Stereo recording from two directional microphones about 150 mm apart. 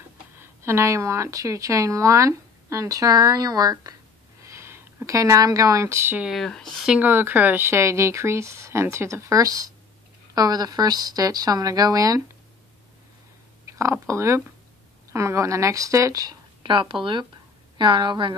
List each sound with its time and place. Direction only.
0.4 s speech: 15° right (ahead or behind)
6.3 s speech: 5° left (ahead or behind)
7.0 s speech: 15° right (ahead or behind)
13.7 s a sound: 20° right (ahead or behind)
14.0 s a woman's voice: 20° right (ahead or behind)